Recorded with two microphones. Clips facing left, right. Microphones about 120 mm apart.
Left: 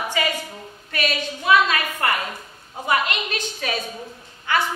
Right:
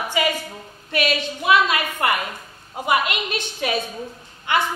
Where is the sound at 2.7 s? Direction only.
15° right (ahead or behind).